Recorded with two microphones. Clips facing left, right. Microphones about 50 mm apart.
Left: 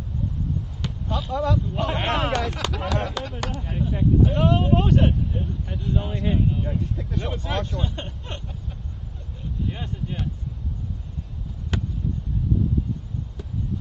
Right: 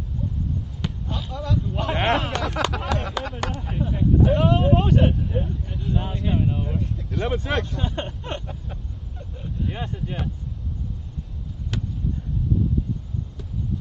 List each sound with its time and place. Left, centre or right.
0.8 s speech: centre
5.3 s speech: centre
6.1 s speech: centre
7.9 s vehicle: centre
9.7 s speech: centre
11.7 s basketball bounce: centre